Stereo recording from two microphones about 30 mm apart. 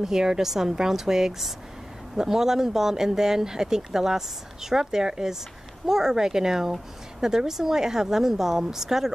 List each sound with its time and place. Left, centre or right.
0.0 s speech: centre